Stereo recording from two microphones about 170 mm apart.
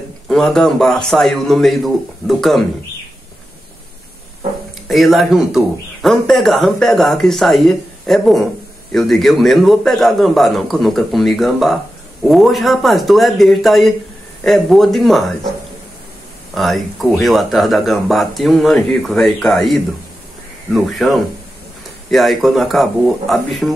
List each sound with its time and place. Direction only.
0.3 s speech: 5° left (ahead or behind)
4.8 s speech: centre (ahead or behind)
16.5 s speech: centre (ahead or behind)